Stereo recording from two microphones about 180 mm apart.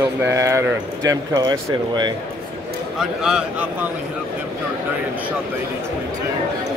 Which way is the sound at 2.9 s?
5° right (ahead or behind).